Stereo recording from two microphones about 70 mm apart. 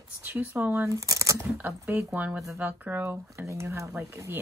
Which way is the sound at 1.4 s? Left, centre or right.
Right.